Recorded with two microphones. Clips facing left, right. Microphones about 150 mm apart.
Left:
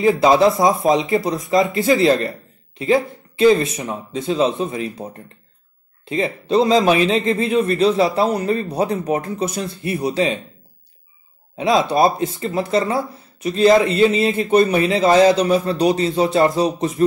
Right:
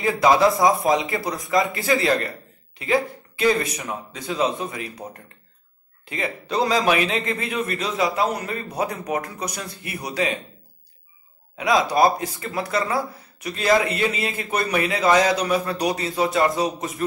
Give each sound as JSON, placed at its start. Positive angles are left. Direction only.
{"t": 0.0, "sound": "speech", "side_deg": 25}
{"t": 6.0, "sound": "speech", "side_deg": 25}
{"t": 11.5, "sound": "speech", "side_deg": 25}